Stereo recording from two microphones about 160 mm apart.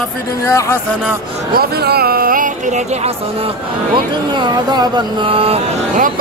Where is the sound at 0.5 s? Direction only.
20° left (ahead or behind).